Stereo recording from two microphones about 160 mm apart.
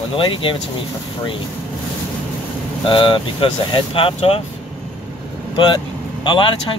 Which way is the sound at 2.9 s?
30° left (ahead or behind).